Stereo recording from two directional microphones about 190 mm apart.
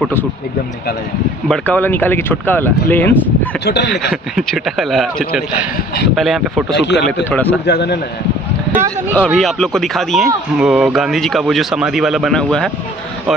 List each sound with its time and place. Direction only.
1.5 s speech: 10° left (ahead or behind)
3.6 s a man's voice: 65° left (ahead or behind)
4.1 s speech: centre (ahead or behind)
6.1 s speech: centre (ahead or behind)
6.7 s a man's voice: 65° left (ahead or behind)
7.2 s speech: 10° left (ahead or behind)
7.6 s a man's voice: 60° left (ahead or behind)
9.1 s speech: 5° left (ahead or behind)